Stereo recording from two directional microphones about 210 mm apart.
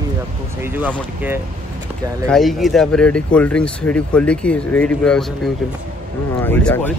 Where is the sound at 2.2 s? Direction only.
Centre (ahead or behind).